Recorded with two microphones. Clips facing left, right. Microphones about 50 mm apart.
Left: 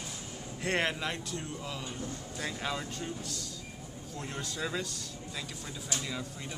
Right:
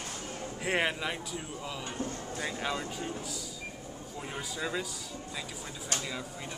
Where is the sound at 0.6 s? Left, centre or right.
Centre.